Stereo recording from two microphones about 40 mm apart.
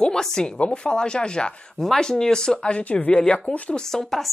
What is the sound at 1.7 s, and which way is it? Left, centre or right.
Speech, centre.